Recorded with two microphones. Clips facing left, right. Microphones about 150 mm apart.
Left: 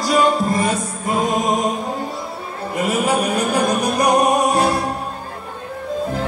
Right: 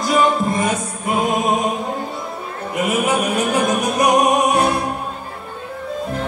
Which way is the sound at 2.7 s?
10° right (ahead or behind).